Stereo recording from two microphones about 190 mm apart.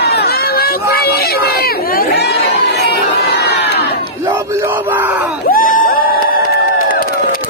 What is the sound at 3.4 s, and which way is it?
Battle cry, 60° left (ahead or behind).